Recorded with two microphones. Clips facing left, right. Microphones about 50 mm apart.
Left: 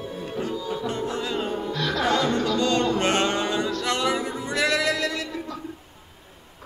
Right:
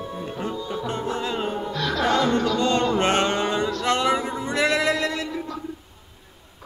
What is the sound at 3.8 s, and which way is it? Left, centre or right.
Music, right.